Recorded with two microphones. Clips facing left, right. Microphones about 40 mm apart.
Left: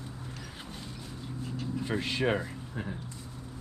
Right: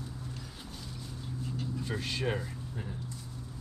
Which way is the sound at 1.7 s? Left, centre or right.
Left.